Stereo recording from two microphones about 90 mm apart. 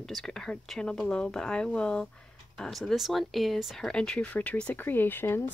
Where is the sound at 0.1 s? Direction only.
5° left (ahead or behind).